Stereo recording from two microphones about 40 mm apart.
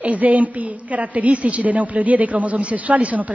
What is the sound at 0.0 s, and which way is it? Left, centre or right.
A woman's voice, right.